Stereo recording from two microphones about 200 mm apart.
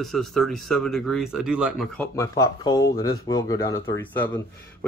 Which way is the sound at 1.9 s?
10° left (ahead or behind).